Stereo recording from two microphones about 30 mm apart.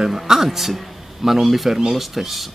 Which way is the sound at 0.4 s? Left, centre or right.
Centre.